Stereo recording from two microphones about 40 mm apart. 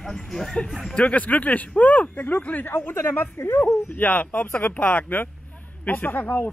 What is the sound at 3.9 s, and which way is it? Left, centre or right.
A man's voice, left.